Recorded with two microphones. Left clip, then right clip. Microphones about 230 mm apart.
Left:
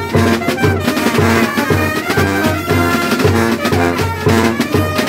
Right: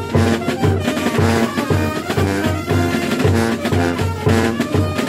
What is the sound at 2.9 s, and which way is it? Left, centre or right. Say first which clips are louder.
Music: left 5 dB; left.